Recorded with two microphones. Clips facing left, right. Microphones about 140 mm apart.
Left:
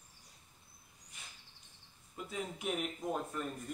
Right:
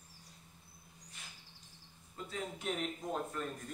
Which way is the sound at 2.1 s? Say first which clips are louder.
Left 1 dB; 10° left (ahead or behind).